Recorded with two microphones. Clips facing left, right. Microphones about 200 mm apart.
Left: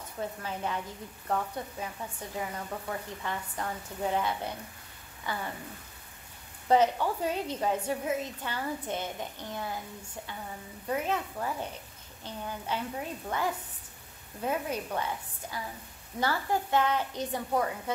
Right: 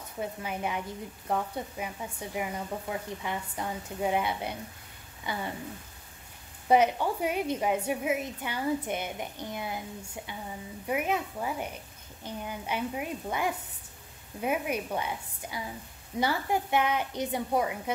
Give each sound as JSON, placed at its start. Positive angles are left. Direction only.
{"t": 0.2, "sound": "speech", "side_deg": -15}
{"t": 5.2, "sound": "a sound", "side_deg": -15}
{"t": 6.7, "sound": "speech", "side_deg": -15}
{"t": 10.9, "sound": "speech", "side_deg": -15}